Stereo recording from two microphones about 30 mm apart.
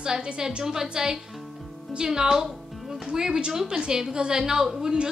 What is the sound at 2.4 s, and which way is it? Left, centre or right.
Music, centre.